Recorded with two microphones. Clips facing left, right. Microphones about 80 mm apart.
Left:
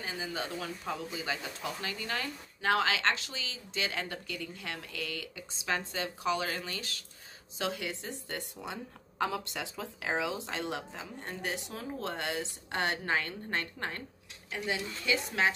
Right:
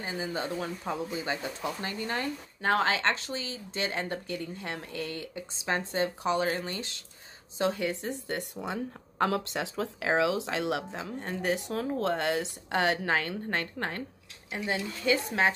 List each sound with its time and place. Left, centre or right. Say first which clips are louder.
0.0 s speech: right 4 dB; right
8.0 s speech: right 6 dB; right
10.9 s speech: right 6 dB; right